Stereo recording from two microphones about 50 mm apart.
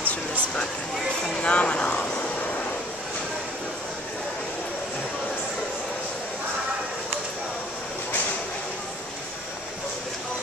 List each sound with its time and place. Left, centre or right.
1.4 s speech: left
2.0 s vehicle: left